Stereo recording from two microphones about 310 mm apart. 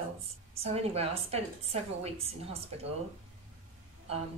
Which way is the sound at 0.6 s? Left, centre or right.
Centre.